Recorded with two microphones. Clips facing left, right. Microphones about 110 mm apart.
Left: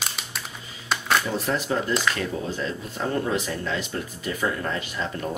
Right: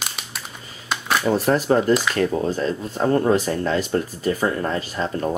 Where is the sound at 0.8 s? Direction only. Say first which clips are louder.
Right 1 dB; centre (ahead or behind).